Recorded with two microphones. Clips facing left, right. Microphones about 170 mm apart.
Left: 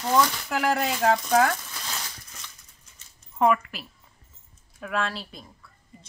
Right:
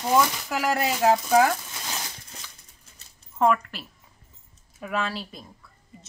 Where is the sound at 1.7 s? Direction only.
20° right (ahead or behind).